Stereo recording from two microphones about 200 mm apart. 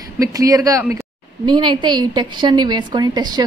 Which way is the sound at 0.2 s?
15° right (ahead or behind).